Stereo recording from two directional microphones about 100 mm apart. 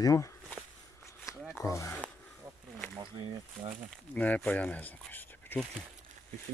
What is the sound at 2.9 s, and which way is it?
Speech, 50° right (ahead or behind).